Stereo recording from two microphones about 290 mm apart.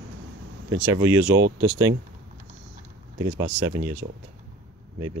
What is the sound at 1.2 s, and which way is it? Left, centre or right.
Speech, right.